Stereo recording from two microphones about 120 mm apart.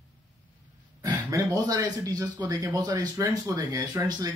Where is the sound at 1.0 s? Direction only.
30° right (ahead or behind).